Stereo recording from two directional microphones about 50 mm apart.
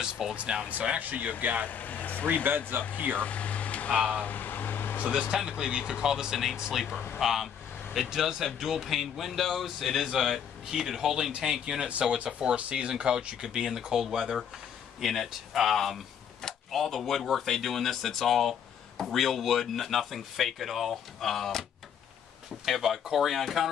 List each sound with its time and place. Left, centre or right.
0.0 s speech: centre
0.9 s speech: right
1.7 s speech: left
2.7 s speech: right
3.2 s a sound: left
4.1 s air conditioning: left
5.3 s speech: centre
11.9 s speech: right; by 21.6 s centre
22.7 s speech: centre